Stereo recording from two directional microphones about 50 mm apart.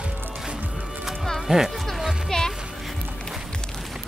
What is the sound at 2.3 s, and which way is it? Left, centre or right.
Music, centre.